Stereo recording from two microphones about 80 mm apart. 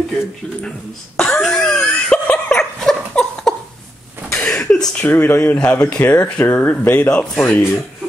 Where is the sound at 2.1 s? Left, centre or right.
Centre.